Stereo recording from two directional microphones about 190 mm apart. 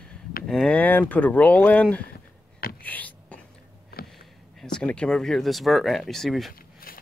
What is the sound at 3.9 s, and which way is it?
Sniff, 50° left (ahead or behind).